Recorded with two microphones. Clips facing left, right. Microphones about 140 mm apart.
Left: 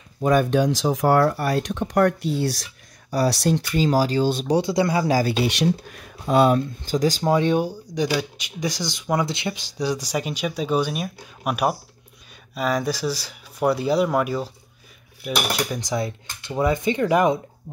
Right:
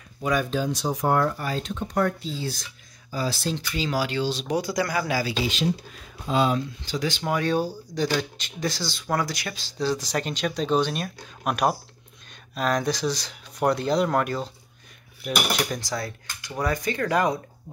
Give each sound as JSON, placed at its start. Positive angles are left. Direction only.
{"t": 0.2, "sound": "speech", "side_deg": 50}
{"t": 3.7, "sound": "speech", "side_deg": 45}
{"t": 4.5, "sound": "speech", "side_deg": 25}
{"t": 5.4, "sound": "speech", "side_deg": 65}
{"t": 7.3, "sound": "speech", "side_deg": 20}
{"t": 15.8, "sound": "speech", "side_deg": 20}